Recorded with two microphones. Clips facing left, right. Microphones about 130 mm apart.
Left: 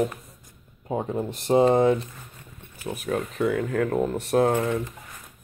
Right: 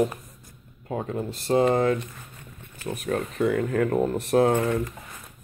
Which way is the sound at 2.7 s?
5° left (ahead or behind).